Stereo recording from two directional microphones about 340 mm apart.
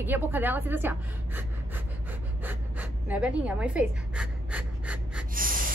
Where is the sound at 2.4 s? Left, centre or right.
Centre.